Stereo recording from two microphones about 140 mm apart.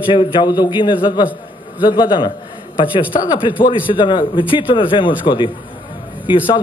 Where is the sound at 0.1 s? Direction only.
35° left (ahead or behind).